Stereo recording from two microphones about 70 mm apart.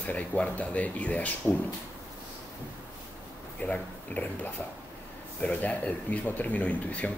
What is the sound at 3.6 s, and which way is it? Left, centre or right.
Speech, left.